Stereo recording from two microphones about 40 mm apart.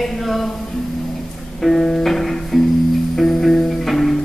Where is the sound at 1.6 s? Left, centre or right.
Centre.